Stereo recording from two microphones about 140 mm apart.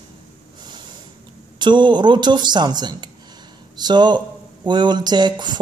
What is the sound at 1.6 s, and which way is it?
Speech, 35° right (ahead or behind).